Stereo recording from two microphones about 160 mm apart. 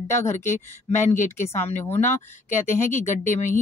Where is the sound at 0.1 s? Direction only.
15° left (ahead or behind).